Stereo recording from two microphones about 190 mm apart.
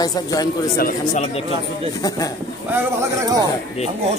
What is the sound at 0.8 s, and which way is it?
Speech, 45° left (ahead or behind).